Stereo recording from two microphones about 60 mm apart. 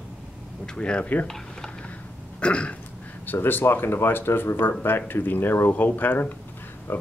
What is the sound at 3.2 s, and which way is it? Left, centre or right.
Speech, left.